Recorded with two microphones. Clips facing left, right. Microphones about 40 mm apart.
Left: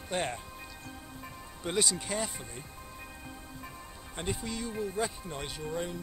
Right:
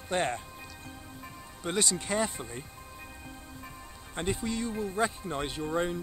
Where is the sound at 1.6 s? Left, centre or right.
Centre.